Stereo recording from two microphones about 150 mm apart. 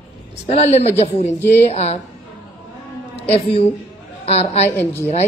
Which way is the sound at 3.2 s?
45° left (ahead or behind).